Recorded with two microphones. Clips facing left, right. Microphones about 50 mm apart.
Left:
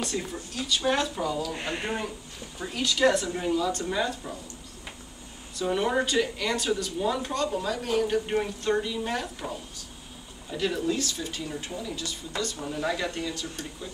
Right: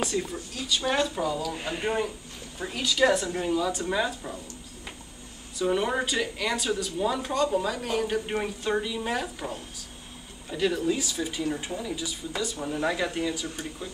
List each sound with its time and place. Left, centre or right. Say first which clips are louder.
0.0 s speech: right 3 dB; centre
5.6 s speech: even; centre